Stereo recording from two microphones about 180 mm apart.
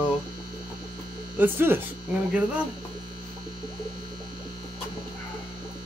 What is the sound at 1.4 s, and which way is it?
Speech, 10° right (ahead or behind).